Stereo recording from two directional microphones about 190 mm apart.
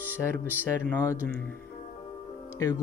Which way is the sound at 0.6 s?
15° left (ahead or behind).